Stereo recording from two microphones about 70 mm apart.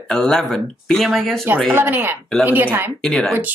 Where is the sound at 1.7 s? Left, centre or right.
Right.